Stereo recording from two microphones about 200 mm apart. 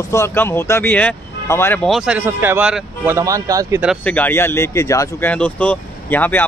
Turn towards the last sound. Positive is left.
turn(degrees=10)  # may be behind; listen again after turning